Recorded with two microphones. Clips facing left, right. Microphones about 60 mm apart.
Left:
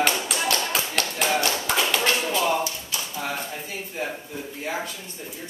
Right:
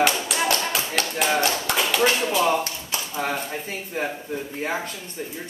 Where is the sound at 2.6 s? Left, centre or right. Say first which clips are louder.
Even; right.